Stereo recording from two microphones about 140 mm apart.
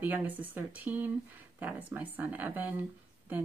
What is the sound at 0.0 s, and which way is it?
Speech, 15° right (ahead or behind).